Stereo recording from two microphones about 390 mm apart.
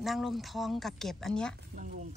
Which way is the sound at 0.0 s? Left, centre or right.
Centre.